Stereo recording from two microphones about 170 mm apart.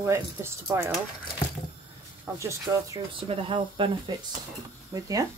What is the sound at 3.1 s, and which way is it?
Speech, 30° right (ahead or behind).